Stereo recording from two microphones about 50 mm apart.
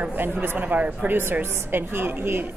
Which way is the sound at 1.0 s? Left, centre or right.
Right.